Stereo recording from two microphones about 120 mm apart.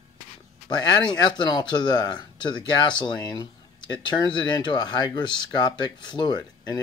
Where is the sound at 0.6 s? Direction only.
35° left (ahead or behind).